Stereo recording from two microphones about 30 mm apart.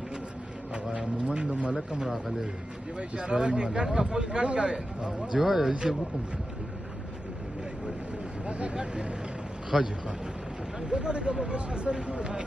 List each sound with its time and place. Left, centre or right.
0.9 s speech: right
3.0 s speech: right
5.3 s speech: centre
8.5 s speech: right
9.7 s speech: centre
10.9 s speech: right